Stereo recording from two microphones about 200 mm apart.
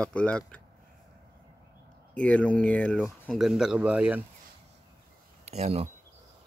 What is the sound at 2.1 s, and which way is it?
Speech, 5° left (ahead or behind).